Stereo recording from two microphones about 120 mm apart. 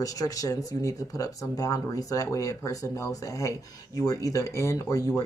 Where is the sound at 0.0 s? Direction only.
30° left (ahead or behind).